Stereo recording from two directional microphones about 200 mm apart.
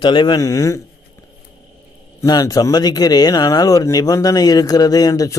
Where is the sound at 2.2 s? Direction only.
20° left (ahead or behind).